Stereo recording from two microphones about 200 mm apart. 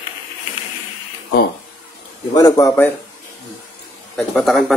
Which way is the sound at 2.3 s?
15° left (ahead or behind).